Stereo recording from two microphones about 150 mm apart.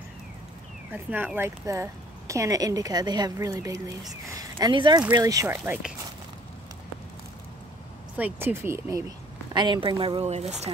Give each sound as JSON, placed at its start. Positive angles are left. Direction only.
{"t": 0.9, "sound": "speech", "side_deg": -15}
{"t": 8.2, "sound": "speech", "side_deg": -15}
{"t": 9.5, "sound": "speech", "side_deg": -30}